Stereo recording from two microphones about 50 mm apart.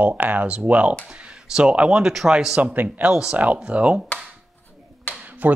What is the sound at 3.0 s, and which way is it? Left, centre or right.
Speech, centre.